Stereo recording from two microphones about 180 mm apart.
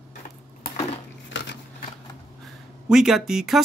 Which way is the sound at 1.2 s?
85° left.